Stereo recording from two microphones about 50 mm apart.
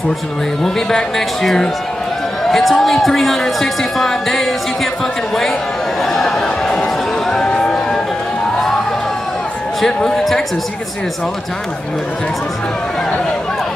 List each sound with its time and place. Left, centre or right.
0.7 s a woman's voice: centre
6.0 s a sound: centre
10.0 s speech: centre